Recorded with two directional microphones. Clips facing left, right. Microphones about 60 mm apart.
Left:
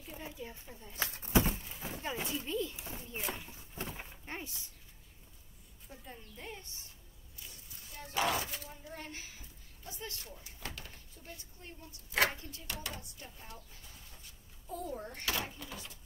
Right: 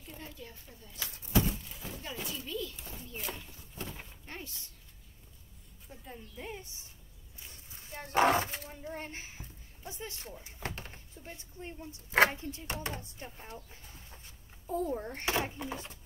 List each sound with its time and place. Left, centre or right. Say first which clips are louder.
0.0 s speech: left 2 dB; centre
0.9 s speech: left 1 dB; left
1.5 s a sound: even; left
5.9 s a woman's voice: right 2 dB; centre
7.3 s a child's voice: right 2 dB; right